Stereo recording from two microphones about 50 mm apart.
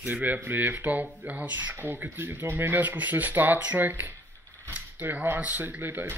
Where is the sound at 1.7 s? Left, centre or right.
Right.